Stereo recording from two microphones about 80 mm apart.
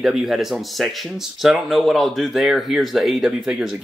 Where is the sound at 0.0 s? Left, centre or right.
Centre.